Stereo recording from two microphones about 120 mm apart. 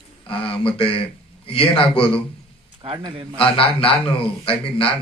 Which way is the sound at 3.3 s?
50° left (ahead or behind).